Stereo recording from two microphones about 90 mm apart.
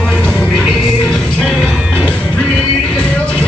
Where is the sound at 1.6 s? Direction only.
15° right (ahead or behind).